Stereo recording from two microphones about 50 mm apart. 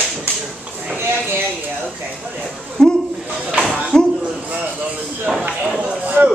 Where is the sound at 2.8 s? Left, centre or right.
Centre.